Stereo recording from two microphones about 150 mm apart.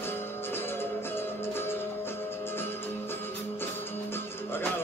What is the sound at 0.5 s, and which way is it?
Music, 15° left (ahead or behind).